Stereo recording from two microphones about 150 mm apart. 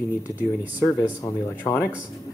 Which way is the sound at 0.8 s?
20° left (ahead or behind).